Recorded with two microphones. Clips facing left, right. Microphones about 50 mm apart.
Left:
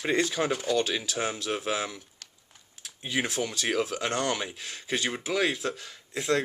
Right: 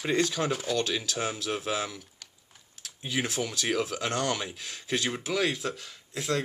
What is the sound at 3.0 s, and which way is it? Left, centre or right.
Speech, centre.